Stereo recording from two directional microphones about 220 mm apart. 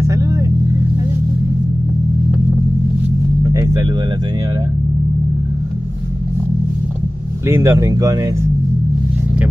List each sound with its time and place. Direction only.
0.0 s vehicle: 15° right (ahead or behind)
3.4 s vehicle: 15° right (ahead or behind)
7.4 s speech: 10° right (ahead or behind)